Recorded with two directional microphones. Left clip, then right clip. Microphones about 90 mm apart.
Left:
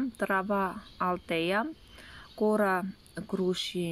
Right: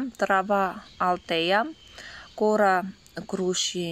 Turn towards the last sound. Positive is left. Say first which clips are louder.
# right 4 dB
turn(degrees=35)  # may be behind; listen again after turning